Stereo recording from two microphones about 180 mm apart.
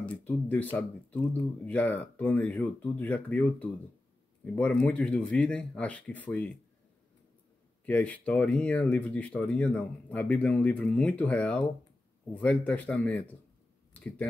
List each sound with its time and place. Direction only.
0.0 s speech: 10° left (ahead or behind)
7.8 s speech: 10° left (ahead or behind)
13.9 s a sound: 10° left (ahead or behind)